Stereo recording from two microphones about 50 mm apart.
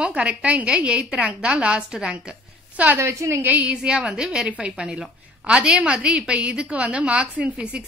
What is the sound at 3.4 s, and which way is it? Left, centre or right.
Speech, right.